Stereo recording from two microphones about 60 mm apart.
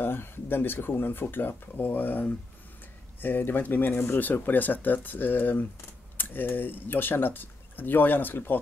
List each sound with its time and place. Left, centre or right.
0.0 s speech: left